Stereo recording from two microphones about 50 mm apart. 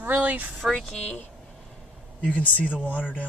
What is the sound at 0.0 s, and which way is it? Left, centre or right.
Vehicle, right.